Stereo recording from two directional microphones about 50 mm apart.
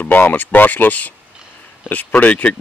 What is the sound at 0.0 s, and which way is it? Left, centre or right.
Speech, left.